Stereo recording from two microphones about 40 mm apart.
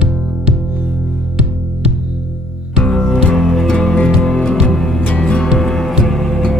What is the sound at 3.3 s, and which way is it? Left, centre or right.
Music, centre.